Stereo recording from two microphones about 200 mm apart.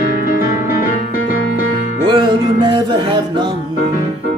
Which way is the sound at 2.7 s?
25° right (ahead or behind).